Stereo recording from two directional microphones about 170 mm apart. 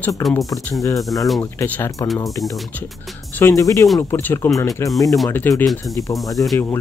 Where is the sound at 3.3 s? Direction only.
15° left (ahead or behind).